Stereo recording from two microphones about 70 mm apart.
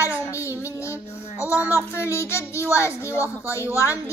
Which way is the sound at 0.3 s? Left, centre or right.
Left.